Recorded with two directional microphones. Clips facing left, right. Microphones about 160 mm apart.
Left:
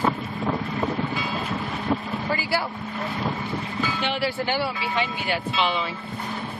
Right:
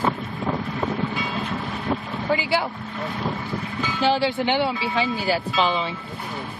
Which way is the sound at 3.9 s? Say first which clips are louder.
Right 8 dB; 30° right (ahead or behind).